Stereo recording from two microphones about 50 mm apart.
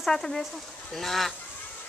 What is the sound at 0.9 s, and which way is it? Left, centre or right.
Goose, centre.